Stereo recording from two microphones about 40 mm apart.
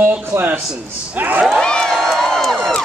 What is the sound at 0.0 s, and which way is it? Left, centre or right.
Speech, right.